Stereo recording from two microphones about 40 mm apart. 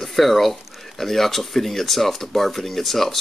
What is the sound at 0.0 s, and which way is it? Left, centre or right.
Speech, centre.